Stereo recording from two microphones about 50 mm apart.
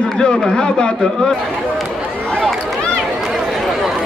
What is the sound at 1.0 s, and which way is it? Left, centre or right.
Speech, centre.